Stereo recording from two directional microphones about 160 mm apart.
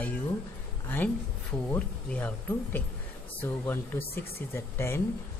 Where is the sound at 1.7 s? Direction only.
10° left (ahead or behind).